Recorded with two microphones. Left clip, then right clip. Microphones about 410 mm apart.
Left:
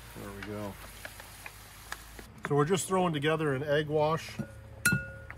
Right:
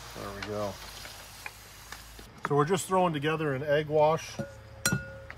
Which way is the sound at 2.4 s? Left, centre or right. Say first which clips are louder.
Right 2 dB; centre.